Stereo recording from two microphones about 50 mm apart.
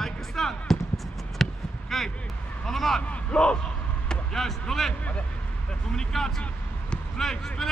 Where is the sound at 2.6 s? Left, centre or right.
Centre.